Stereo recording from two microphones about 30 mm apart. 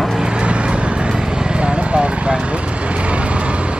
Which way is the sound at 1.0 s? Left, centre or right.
Right.